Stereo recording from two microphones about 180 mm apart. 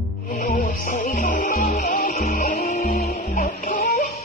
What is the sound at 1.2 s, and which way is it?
Music, 45° left (ahead or behind).